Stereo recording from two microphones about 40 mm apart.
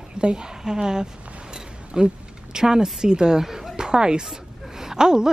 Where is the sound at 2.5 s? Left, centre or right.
Centre.